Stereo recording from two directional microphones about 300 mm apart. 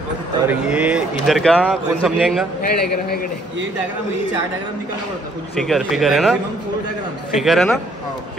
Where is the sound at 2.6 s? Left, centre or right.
Left.